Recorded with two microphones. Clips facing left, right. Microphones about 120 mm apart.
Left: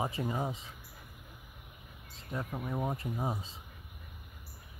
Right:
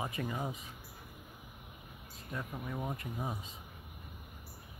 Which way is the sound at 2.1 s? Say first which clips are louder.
Left 3 dB; 25° left (ahead or behind).